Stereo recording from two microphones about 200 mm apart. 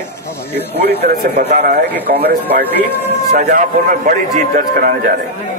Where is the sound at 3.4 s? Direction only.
40° right (ahead or behind).